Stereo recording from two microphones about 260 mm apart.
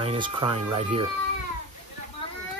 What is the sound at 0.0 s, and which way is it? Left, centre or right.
Speech, centre.